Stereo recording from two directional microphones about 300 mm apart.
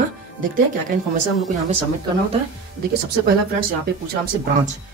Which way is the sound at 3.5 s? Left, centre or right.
Right.